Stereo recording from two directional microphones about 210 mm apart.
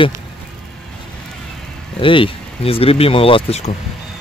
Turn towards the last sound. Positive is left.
turn(degrees=30)  # may be behind; listen again after turning